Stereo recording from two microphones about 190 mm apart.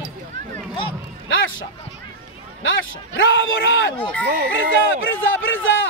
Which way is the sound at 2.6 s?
75° left (ahead or behind).